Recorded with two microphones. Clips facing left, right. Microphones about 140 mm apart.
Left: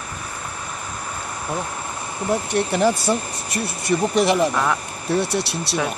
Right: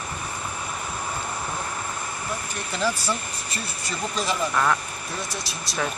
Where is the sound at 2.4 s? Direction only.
70° left (ahead or behind).